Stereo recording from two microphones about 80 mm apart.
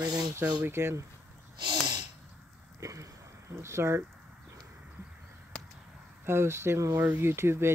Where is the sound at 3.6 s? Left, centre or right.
Right.